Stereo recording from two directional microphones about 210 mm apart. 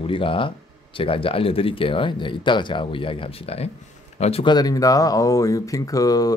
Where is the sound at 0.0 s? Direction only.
25° left (ahead or behind).